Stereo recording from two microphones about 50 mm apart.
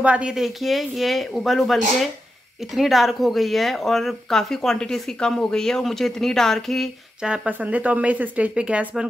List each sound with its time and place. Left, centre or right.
0.0 s speech: right
0.3 s speech: centre
7.2 s speech: centre
7.4 s speech: right